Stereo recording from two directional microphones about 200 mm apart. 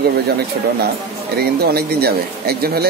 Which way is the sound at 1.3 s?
50° right (ahead or behind).